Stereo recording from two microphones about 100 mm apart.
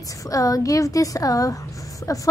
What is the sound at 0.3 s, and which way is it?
A woman's voice, 35° left (ahead or behind).